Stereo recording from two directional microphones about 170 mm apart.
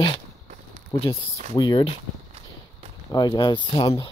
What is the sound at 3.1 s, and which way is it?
Speech, 25° left (ahead or behind).